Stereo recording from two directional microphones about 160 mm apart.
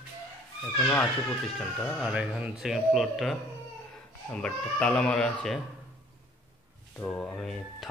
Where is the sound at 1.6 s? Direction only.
5° left (ahead or behind).